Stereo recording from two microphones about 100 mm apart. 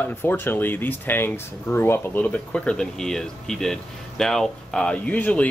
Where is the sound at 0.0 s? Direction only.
20° left (ahead or behind).